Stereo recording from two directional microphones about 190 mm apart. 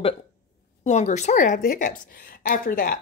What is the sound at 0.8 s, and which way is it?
A woman's voice, 35° left (ahead or behind).